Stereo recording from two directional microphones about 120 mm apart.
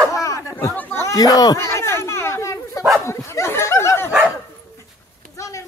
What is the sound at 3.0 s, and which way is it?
Dog, 25° left (ahead or behind).